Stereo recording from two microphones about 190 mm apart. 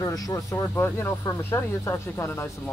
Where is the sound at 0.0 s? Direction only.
20° left (ahead or behind).